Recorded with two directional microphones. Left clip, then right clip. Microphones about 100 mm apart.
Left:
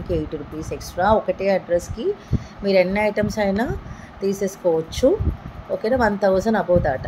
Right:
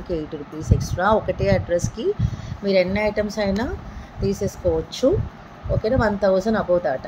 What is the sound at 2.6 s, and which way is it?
Speech, 15° left (ahead or behind).